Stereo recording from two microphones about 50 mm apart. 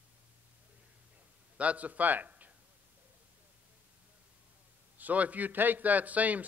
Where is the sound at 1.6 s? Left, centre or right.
Right.